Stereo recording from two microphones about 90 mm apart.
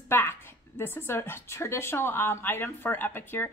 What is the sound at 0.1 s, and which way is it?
Speech, 25° left (ahead or behind).